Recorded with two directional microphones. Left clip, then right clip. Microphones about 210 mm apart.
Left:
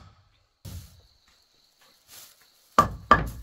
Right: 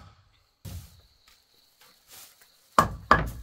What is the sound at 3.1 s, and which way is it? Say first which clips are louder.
Knock: left 1 dB; 5° right (ahead or behind).